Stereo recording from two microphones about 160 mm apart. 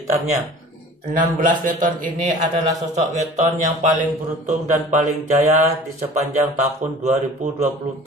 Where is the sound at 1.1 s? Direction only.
55° right (ahead or behind).